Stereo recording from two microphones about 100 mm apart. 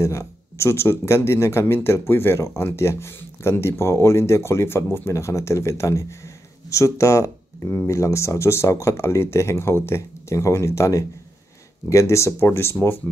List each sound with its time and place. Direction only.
0.0 s speech: 25° left (ahead or behind)